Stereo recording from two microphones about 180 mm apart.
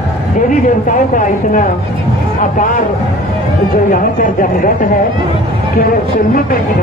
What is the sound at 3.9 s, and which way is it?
Speech, 50° left (ahead or behind).